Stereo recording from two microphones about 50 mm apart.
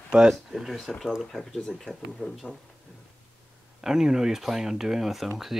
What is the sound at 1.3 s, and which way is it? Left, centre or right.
Speech, centre.